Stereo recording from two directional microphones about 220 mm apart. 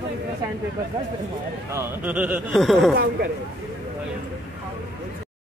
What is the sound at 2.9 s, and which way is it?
Speech, 45° right (ahead or behind).